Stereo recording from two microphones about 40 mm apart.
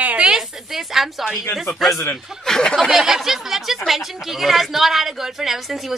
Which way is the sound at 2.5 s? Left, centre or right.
Centre.